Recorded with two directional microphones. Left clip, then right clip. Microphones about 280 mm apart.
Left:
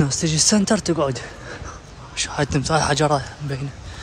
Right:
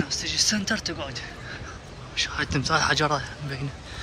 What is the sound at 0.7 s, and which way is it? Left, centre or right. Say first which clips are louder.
Speech: left 7 dB; centre.